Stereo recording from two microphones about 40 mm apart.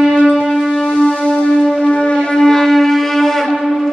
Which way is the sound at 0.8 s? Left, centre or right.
Left.